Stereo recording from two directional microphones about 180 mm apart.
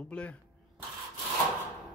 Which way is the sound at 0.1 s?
5° left (ahead or behind).